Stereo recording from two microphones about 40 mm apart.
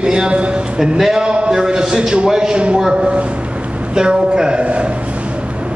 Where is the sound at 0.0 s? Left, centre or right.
Right.